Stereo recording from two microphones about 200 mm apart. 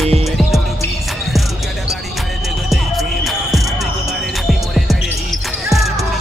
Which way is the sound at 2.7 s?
Centre (ahead or behind).